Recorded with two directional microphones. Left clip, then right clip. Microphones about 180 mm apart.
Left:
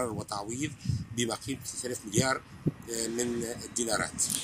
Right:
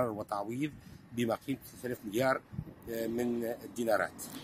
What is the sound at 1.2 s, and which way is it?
Speech, 35° right (ahead or behind).